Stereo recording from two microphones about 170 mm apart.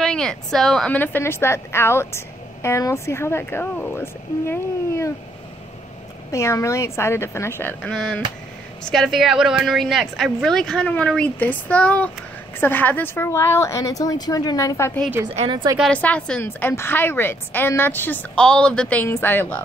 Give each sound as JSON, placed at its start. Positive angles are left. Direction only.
{"t": 0.0, "sound": "a woman's voice", "side_deg": 5}
{"t": 6.3, "sound": "a woman's voice", "side_deg": 15}
{"t": 15.3, "sound": "a woman's voice", "side_deg": -25}
{"t": 15.8, "sound": "a woman's voice", "side_deg": 10}